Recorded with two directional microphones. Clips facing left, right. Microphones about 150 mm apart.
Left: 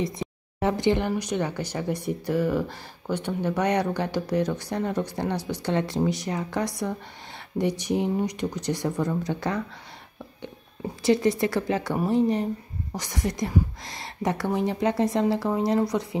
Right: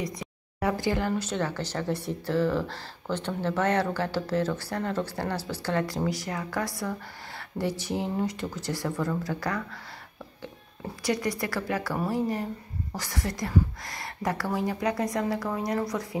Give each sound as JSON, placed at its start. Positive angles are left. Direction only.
{"t": 0.0, "sound": "speech", "side_deg": 25}
{"t": 11.0, "sound": "speech", "side_deg": 25}